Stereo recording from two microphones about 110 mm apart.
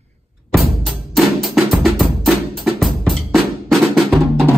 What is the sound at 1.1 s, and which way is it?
Drum, centre (ahead or behind).